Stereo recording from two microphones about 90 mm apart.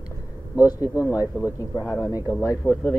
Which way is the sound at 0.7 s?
40° left (ahead or behind).